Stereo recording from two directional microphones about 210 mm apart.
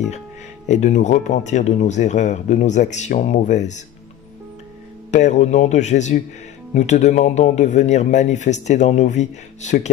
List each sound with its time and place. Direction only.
0.7 s a man's voice: 35° left (ahead or behind)
5.1 s a man's voice: 35° left (ahead or behind)